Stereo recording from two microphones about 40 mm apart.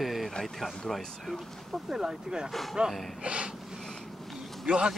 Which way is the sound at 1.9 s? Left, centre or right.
Centre.